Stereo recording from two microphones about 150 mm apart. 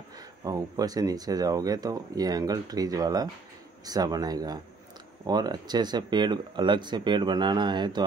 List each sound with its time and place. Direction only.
0.4 s speech: 25° right (ahead or behind)